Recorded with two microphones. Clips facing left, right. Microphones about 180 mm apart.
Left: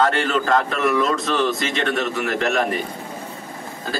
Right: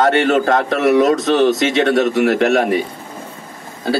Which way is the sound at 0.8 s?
75° right (ahead or behind).